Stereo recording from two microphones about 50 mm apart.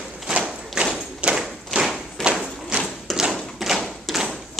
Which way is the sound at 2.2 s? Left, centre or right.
Centre.